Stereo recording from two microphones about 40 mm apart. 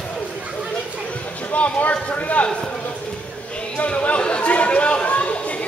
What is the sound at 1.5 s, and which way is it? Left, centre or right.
Speech, left.